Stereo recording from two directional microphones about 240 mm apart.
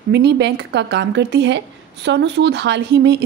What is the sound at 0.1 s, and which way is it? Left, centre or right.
A woman's voice, right.